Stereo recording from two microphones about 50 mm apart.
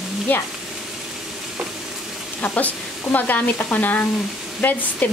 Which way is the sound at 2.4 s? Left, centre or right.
Left.